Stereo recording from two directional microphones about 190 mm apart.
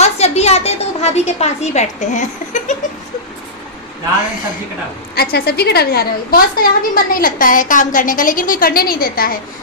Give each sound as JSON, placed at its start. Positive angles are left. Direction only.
{"t": 0.0, "sound": "a woman's voice", "side_deg": 35}
{"t": 5.1, "sound": "a woman's voice", "side_deg": 55}